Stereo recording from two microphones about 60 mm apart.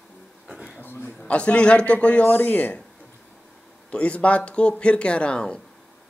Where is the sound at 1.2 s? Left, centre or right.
Centre.